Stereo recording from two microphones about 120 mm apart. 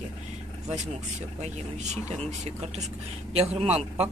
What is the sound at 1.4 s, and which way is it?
Speech, 65° right (ahead or behind).